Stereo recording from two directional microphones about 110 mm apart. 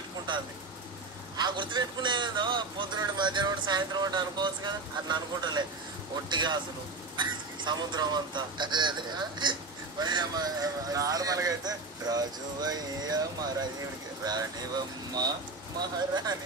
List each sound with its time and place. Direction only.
1.3 s a man's voice: 45° right (ahead or behind)